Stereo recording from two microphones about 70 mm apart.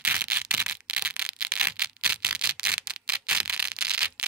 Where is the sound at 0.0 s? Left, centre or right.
Right.